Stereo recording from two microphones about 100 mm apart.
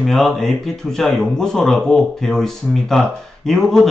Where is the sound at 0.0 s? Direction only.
Centre (ahead or behind).